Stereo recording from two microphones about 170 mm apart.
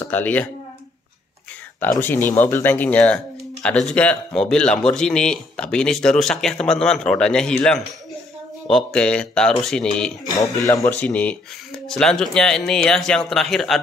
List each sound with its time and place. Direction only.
0.0 s speech: 10° left (ahead or behind)
2.0 s a man's voice: 10° left (ahead or behind)
10.4 s a man's voice: 20° left (ahead or behind); by 13.7 s centre (ahead or behind)